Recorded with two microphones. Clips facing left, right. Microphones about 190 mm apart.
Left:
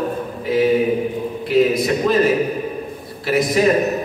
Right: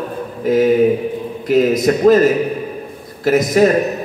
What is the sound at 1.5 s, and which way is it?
Speech, 45° right (ahead or behind).